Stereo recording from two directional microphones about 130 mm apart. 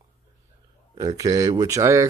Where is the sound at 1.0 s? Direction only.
25° right (ahead or behind).